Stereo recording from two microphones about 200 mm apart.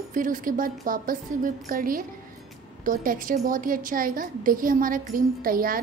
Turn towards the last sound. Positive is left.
turn(degrees=-45)  # may be behind; listen again after turning